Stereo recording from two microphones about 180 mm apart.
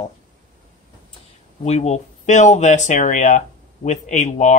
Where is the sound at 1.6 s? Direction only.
40° left (ahead or behind).